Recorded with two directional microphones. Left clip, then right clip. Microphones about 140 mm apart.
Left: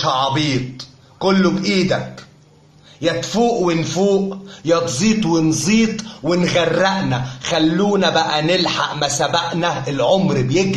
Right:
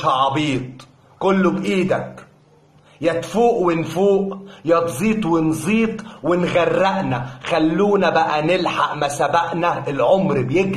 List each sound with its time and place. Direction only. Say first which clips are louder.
0.0 s a man's voice: even; centre (ahead or behind)
3.0 s a man's voice: even; centre (ahead or behind)